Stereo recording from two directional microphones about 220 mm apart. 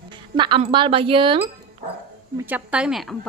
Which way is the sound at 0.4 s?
25° right (ahead or behind).